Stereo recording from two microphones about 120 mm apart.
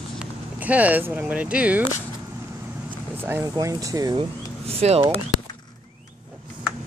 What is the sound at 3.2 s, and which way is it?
Speech, 20° right (ahead or behind).